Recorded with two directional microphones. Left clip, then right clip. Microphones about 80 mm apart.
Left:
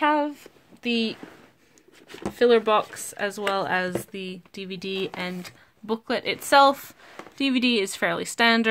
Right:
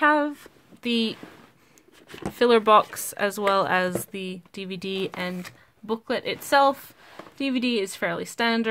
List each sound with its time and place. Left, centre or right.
0.0 s a sound: centre
2.3 s speech: right
4.1 s speech: centre
5.9 s a woman's voice: centre
6.4 s speech: left